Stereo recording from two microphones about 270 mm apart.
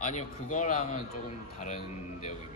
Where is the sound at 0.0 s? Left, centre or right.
Left.